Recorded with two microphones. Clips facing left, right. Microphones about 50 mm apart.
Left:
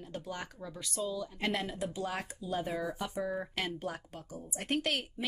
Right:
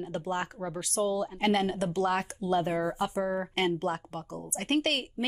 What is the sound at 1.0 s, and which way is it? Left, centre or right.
Speech, right.